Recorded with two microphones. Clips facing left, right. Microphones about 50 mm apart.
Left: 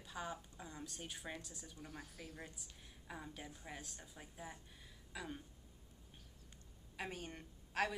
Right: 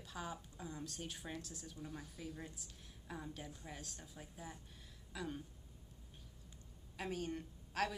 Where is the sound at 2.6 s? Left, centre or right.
Centre.